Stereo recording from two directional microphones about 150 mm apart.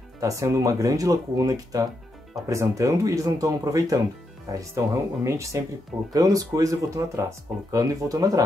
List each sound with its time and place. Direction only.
0.2 s speech: 20° right (ahead or behind)